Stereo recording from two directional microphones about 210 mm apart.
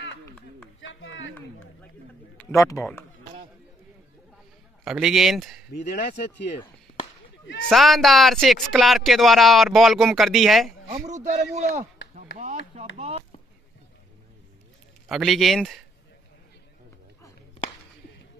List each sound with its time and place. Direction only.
0.7 s a sound: 70° left (ahead or behind)
2.3 s speech: 15° left (ahead or behind)
4.8 s speech: centre (ahead or behind)
5.7 s speech: 50° left (ahead or behind)
7.7 s speech: centre (ahead or behind)
10.9 s a sound: 40° right (ahead or behind)
11.2 s speech: 35° right (ahead or behind)
15.0 s speech: centre (ahead or behind)